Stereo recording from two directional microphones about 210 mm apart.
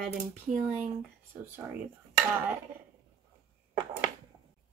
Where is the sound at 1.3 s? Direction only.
10° right (ahead or behind).